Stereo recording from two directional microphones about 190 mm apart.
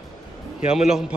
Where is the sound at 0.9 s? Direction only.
5° right (ahead or behind).